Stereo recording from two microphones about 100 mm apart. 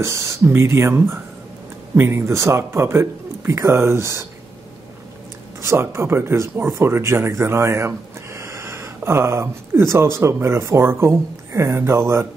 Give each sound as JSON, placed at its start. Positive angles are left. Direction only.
{"t": 0.0, "sound": "speech", "side_deg": -30}
{"t": 5.6, "sound": "speech", "side_deg": -25}